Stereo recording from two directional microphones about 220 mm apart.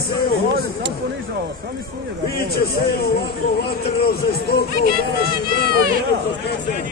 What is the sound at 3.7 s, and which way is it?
Speech, 45° left (ahead or behind).